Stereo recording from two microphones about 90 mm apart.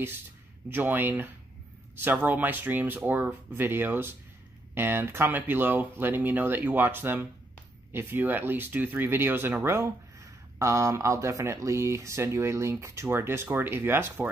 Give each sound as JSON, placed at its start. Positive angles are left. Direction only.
{"t": 0.7, "sound": "speech", "side_deg": -20}